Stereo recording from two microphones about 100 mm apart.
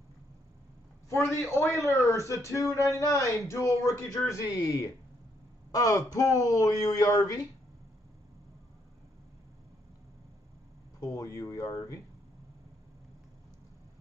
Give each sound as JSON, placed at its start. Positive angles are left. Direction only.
{"t": 1.0, "sound": "a man's voice", "side_deg": 30}
{"t": 11.0, "sound": "a man's voice", "side_deg": 35}